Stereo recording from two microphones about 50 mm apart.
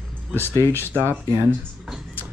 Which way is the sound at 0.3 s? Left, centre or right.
Left.